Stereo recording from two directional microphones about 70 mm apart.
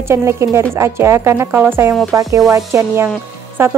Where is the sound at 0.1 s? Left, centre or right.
Right.